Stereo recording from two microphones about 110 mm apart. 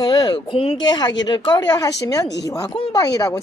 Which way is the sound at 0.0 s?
40° left (ahead or behind).